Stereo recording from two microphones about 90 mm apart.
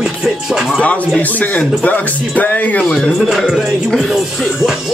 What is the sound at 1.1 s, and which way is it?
Speech, 20° left (ahead or behind).